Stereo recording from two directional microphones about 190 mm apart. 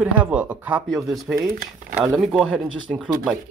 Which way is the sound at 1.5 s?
50° right (ahead or behind).